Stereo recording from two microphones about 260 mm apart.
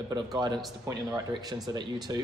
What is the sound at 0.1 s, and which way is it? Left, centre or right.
Speech, centre.